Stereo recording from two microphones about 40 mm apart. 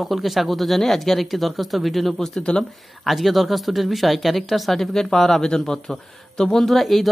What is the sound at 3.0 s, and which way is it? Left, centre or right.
Speech, centre.